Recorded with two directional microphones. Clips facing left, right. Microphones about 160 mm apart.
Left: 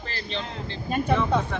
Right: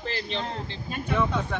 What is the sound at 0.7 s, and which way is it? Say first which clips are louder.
Speech: left 7 dB; 50° left (ahead or behind).